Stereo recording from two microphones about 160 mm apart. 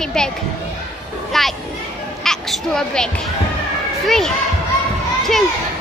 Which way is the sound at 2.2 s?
Centre (ahead or behind).